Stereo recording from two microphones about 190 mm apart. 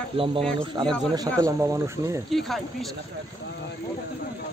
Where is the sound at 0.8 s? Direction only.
20° right (ahead or behind).